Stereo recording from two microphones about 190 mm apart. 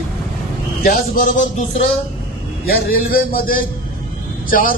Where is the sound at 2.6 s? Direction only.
50° left (ahead or behind).